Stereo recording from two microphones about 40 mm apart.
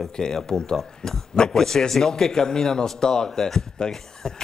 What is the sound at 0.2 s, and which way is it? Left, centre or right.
Speech, centre.